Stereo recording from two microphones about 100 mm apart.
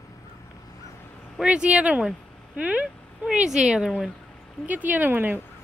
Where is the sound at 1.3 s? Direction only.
10° right (ahead or behind).